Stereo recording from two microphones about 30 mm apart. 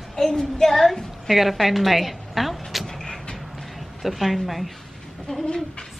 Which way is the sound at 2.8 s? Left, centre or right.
Centre.